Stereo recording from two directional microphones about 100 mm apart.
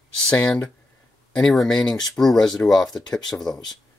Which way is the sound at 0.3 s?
10° left (ahead or behind).